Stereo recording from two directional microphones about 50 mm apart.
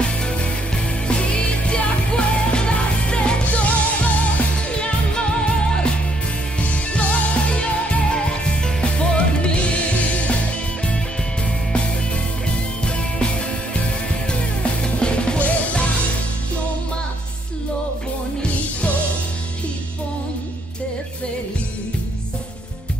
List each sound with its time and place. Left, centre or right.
0.0 s music: centre
6.6 s music: left
13.7 s music: centre